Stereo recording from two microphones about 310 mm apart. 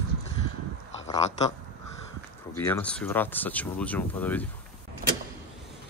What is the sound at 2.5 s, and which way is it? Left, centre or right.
Speech, centre.